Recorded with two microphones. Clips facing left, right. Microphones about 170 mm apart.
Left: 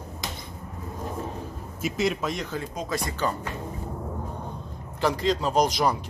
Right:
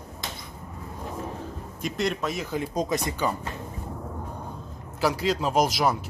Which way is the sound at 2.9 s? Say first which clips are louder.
Right 1 dB; 20° right (ahead or behind).